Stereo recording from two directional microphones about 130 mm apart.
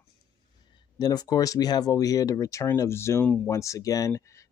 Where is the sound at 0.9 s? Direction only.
30° left (ahead or behind).